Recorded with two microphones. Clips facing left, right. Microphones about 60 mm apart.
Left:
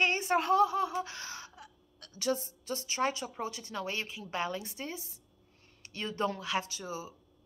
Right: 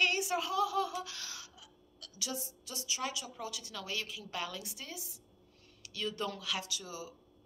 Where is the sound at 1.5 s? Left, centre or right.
Left.